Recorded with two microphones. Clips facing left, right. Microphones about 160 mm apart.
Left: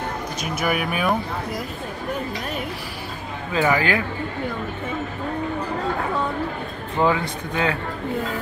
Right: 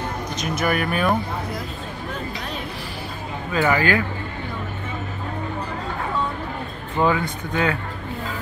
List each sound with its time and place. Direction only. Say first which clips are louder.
0.4 s speech: right 2 dB; 5° left (ahead or behind)
3.6 s speech: right 1 dB; 20° left (ahead or behind)
7.0 s speech: even; 25° left (ahead or behind)